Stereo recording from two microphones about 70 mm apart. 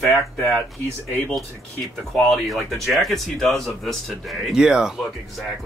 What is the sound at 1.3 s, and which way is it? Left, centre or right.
Speech, centre.